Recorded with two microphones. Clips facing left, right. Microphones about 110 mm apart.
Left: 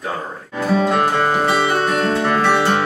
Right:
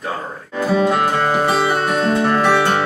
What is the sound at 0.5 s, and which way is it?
Music, 5° right (ahead or behind).